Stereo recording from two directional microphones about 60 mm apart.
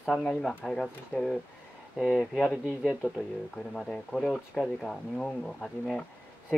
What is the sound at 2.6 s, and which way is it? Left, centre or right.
Speech, centre.